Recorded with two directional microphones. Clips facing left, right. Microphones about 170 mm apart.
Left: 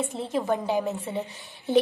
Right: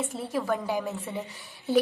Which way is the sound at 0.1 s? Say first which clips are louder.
Left 2 dB; 20° left (ahead or behind).